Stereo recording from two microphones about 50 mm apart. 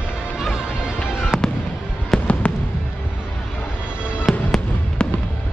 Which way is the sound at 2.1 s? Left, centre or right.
Centre.